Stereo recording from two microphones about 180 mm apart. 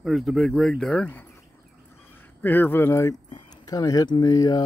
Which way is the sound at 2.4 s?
10° left (ahead or behind).